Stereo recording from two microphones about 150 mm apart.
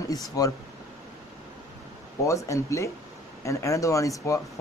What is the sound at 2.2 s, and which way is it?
Speech, 20° left (ahead or behind).